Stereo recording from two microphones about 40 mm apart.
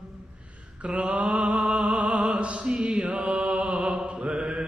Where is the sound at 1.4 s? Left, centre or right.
Right.